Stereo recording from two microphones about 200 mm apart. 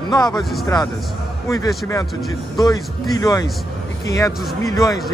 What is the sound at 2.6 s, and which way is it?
Speech, 15° left (ahead or behind).